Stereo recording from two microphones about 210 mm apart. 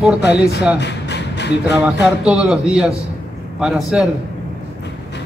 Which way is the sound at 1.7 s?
5° right (ahead or behind).